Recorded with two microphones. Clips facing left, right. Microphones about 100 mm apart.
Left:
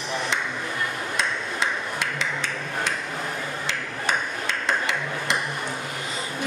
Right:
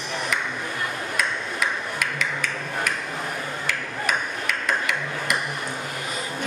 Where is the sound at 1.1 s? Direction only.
25° left (ahead or behind).